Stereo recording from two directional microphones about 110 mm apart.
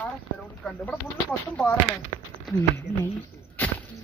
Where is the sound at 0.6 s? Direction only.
Centre (ahead or behind).